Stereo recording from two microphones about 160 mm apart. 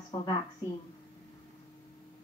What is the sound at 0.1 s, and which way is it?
Speech, 25° left (ahead or behind).